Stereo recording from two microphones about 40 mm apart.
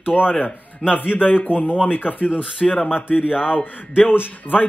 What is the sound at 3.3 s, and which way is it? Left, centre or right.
Speech, left.